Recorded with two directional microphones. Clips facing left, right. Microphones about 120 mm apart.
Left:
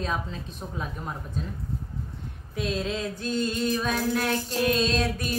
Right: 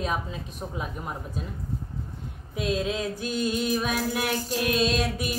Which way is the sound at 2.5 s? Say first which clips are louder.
Right 2 dB; 5° right (ahead or behind).